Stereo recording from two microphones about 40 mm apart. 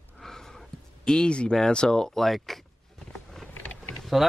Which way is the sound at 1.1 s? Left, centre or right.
Left.